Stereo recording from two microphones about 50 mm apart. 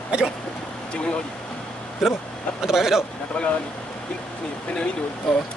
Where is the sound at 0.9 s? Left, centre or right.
Left.